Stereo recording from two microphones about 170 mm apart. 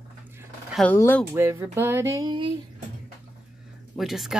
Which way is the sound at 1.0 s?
10° left (ahead or behind).